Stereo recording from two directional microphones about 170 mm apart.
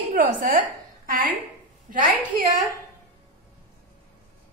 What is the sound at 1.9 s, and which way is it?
Speech, 55° right (ahead or behind).